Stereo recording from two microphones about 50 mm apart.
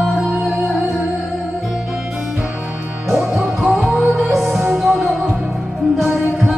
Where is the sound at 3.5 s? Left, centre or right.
Centre.